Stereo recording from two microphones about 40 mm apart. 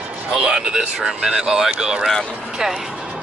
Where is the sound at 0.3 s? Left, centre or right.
Right.